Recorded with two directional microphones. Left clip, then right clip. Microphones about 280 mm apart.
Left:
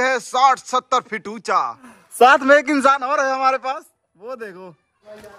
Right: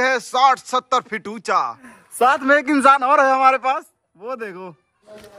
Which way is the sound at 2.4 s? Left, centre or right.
Centre.